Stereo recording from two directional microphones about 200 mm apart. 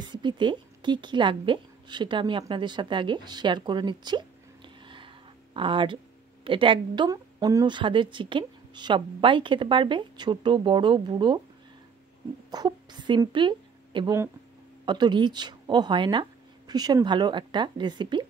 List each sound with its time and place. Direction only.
0.1 s speech: 25° right (ahead or behind)
4.8 s a sound: 25° right (ahead or behind)
6.4 s speech: 25° right (ahead or behind)
12.4 s a woman's voice: 20° right (ahead or behind)